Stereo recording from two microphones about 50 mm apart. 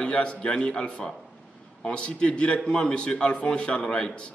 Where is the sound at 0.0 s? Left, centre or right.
Left.